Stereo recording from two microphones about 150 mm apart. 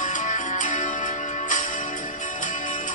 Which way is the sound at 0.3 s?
55° left (ahead or behind).